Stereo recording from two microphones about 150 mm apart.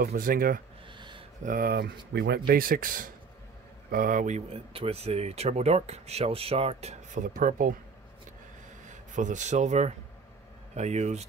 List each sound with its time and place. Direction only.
0.0 s speech: 75° right (ahead or behind)
0.9 s a sound: 30° right (ahead or behind)
1.4 s speech: 70° right (ahead or behind)
4.5 s speech: 40° right (ahead or behind); by 7.7 s 65° right (ahead or behind)
8.8 s speech: 55° right (ahead or behind)